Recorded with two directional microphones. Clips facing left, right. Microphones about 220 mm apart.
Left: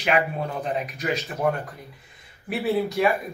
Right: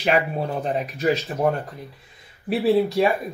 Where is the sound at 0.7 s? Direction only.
35° right (ahead or behind).